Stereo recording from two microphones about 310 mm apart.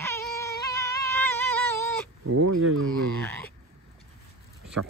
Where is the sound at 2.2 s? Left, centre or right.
Right.